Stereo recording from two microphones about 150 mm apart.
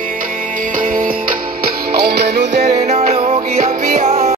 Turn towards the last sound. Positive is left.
turn(degrees=-50)  # may be behind; listen again after turning